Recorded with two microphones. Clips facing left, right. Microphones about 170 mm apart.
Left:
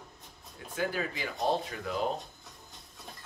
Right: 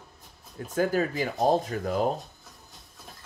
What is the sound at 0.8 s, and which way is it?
Speech, 45° right (ahead or behind).